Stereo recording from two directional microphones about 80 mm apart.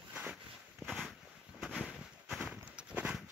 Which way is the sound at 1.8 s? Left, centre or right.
Centre.